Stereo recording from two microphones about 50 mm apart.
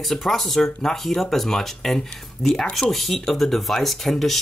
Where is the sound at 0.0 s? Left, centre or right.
Centre.